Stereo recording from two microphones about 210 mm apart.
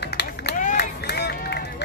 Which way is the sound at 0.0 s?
50° left (ahead or behind).